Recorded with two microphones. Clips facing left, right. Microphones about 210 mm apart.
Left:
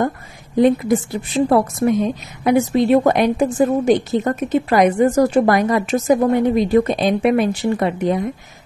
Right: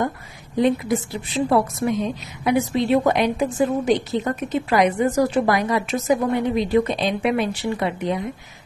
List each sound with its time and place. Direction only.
0.6 s a woman's voice: 50° left (ahead or behind)